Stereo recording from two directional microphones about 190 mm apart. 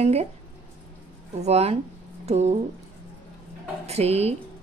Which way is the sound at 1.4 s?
35° right (ahead or behind).